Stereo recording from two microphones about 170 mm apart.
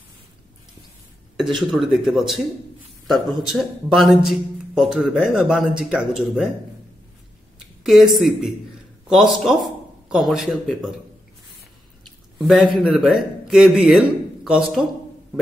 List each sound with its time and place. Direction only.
1.3 s speech: centre (ahead or behind)
7.8 s speech: centre (ahead or behind)
12.4 s a man's voice: centre (ahead or behind)